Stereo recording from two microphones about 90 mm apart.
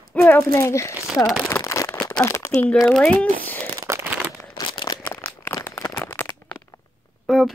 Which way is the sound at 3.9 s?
30° right (ahead or behind).